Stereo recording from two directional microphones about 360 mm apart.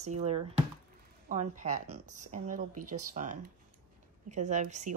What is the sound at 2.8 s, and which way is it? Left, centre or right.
Speech, right.